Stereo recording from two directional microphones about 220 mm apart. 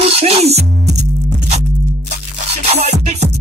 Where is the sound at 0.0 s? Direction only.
25° right (ahead or behind).